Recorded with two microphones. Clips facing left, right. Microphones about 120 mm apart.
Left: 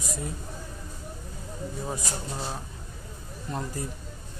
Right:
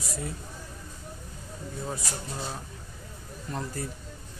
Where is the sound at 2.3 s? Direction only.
30° left (ahead or behind).